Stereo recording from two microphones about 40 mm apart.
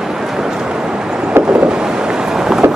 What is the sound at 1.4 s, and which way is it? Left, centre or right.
Vehicle, right.